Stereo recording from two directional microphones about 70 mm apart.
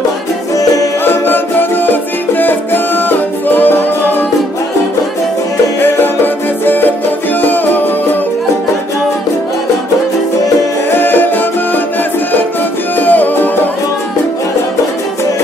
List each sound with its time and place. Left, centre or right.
1.0 s music: left
5.8 s music: left
10.9 s music: left
13.0 s music: left